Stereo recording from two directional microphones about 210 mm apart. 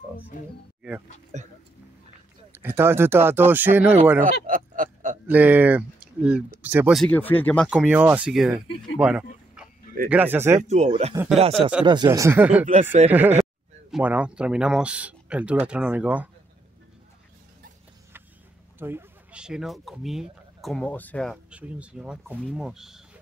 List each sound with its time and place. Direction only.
1.3 s speech: 35° right (ahead or behind)
2.5 s speech: 10° right (ahead or behind)
4.5 s a sound: 40° right (ahead or behind)
5.3 s speech: 10° right (ahead or behind)
10.7 s speech: 30° right (ahead or behind); by 16.3 s 5° right (ahead or behind)
18.8 s speech: 10° right (ahead or behind)